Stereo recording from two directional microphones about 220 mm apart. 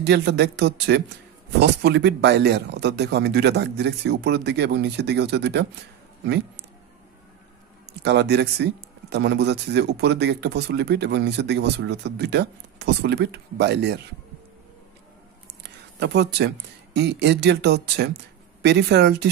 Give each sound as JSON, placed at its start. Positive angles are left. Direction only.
{"t": 0.0, "sound": "speech", "side_deg": -50}
{"t": 8.0, "sound": "speech", "side_deg": -50}
{"t": 15.6, "sound": "speech", "side_deg": -50}